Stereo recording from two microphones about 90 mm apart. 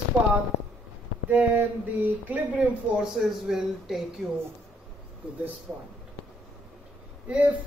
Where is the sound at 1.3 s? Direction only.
15° right (ahead or behind).